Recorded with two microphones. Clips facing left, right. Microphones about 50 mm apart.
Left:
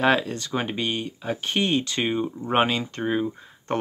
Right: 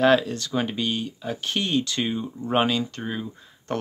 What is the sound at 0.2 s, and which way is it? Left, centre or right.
Speech, left.